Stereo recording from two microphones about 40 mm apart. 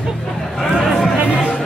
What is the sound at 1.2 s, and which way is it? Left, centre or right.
Music, right.